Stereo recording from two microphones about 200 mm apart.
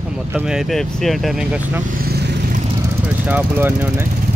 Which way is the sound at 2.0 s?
50° right (ahead or behind).